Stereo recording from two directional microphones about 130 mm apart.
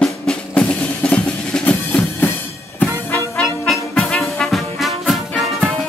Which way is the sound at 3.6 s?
Centre (ahead or behind).